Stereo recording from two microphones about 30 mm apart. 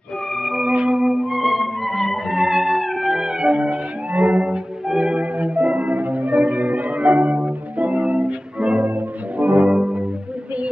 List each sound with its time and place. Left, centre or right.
0.7 s music: right
1.0 s music: centre
1.4 s music: centre
2.2 s music: centre
3.1 s music: centre
3.3 s music: right
4.1 s music: right
5.0 s music: right
5.8 s music: right
7.4 s music: right
9.4 s music: right
9.7 s music: right